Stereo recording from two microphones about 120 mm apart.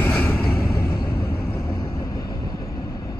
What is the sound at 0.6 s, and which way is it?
Vehicle, 25° left (ahead or behind).